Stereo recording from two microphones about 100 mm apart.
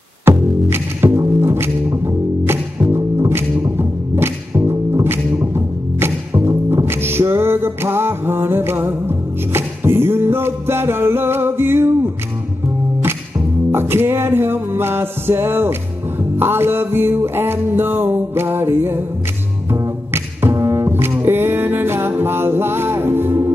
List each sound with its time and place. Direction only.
0.2 s music: 20° right (ahead or behind)
13.7 s music: 25° right (ahead or behind)
20.4 s music: 25° right (ahead or behind)